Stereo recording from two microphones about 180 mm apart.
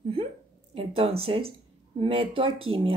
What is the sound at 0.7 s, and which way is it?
Speech, 30° right (ahead or behind).